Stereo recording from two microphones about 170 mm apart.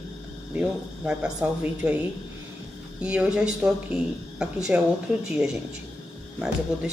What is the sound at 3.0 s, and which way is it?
Speech, 5° right (ahead or behind).